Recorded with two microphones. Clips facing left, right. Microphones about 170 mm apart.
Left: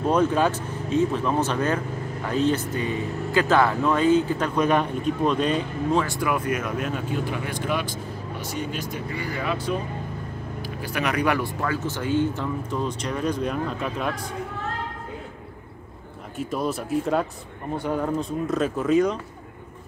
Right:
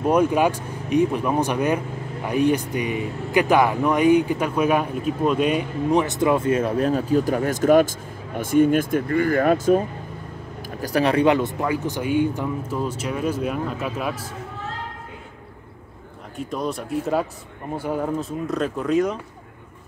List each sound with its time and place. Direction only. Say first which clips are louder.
0.0 s speech: right 2 dB; 10° right (ahead or behind); by 9.8 s 45° right (ahead or behind)
10.8 s speech: right 7 dB; 35° right (ahead or behind); by 14.3 s 5° right (ahead or behind)
16.3 s speech: even; 5° left (ahead or behind)